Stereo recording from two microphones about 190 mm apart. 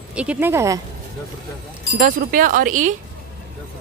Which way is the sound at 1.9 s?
45° right (ahead or behind).